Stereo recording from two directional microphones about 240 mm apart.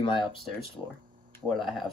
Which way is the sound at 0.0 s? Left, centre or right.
Left.